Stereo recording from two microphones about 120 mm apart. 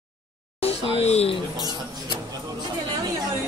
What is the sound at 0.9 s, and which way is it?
Speech, 60° left (ahead or behind).